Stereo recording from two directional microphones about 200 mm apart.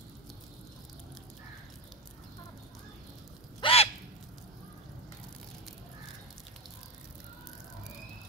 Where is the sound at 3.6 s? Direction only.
30° left (ahead or behind).